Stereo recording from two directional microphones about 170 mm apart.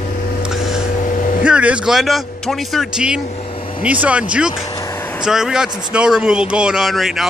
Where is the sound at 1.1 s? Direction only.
50° left (ahead or behind).